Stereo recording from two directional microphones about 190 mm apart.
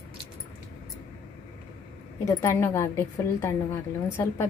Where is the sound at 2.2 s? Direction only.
15° left (ahead or behind).